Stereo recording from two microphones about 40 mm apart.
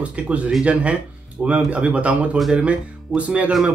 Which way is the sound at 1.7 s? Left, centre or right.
Right.